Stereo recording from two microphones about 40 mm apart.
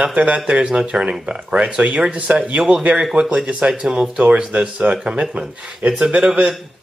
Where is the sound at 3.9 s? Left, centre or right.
Right.